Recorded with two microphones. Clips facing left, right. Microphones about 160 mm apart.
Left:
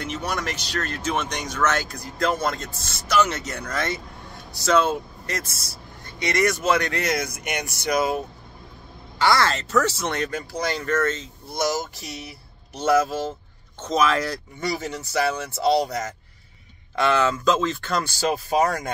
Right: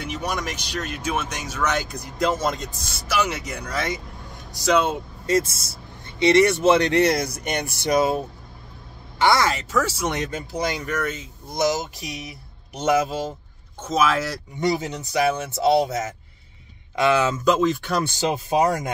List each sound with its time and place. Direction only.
0.0 s speech: 10° right (ahead or behind)
5.3 s speech: 25° right (ahead or behind)
9.2 s speech: 15° right (ahead or behind)
14.6 s speech: 20° right (ahead or behind)